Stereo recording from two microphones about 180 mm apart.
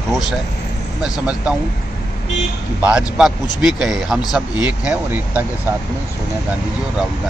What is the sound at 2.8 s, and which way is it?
Speech, 5° right (ahead or behind).